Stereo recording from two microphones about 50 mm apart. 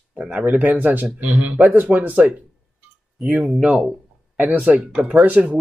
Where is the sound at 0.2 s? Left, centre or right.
Right.